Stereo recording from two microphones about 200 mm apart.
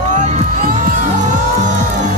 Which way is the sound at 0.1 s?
35° right (ahead or behind).